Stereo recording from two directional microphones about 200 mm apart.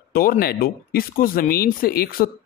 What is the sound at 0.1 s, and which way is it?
Speech, 45° left (ahead or behind).